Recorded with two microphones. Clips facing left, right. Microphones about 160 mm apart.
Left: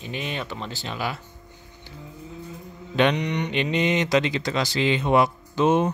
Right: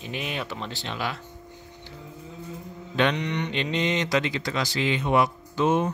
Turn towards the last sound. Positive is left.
turn(degrees=20)  # may be behind; listen again after turning